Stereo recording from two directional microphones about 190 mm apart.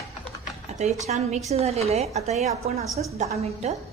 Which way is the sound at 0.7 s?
35° right (ahead or behind).